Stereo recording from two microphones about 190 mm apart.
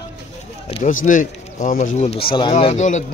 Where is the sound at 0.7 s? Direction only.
30° left (ahead or behind).